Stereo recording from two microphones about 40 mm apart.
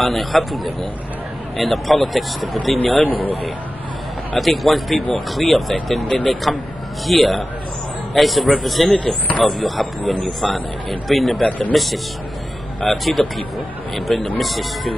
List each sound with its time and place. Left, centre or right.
0.0 s a man's voice: centre
4.4 s a man's voice: centre
11.4 s speech: left
11.7 s a man's voice: centre